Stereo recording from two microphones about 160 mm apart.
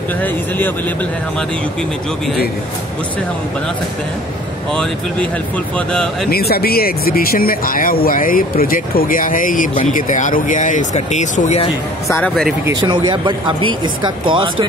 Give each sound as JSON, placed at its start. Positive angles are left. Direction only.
{"t": 0.2, "sound": "speech", "side_deg": 10}
{"t": 5.8, "sound": "speech", "side_deg": 5}
{"t": 6.3, "sound": "speech", "side_deg": 75}
{"t": 12.8, "sound": "speech", "side_deg": -30}